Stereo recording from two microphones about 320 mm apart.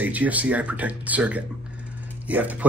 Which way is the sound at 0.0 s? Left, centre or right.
Centre.